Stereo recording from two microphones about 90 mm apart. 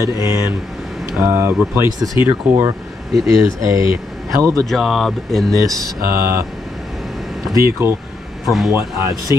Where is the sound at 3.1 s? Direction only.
Centre (ahead or behind).